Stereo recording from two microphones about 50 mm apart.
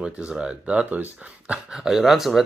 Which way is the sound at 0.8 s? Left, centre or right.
Right.